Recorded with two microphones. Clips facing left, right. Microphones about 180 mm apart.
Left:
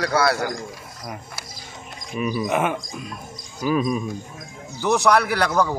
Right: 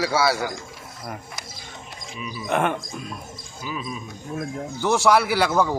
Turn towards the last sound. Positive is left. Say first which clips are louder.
# even
turn(degrees=-5)  # may be behind; listen again after turning